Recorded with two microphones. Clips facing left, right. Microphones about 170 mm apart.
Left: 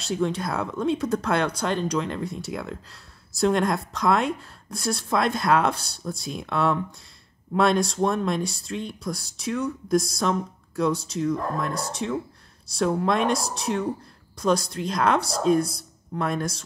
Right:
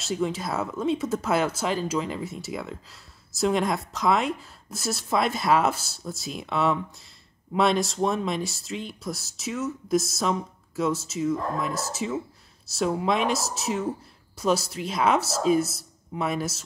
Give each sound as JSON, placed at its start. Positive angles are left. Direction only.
{"t": 0.0, "sound": "speech", "side_deg": 0}